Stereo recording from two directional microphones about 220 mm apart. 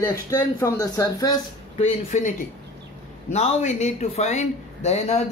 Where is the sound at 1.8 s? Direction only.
30° left (ahead or behind).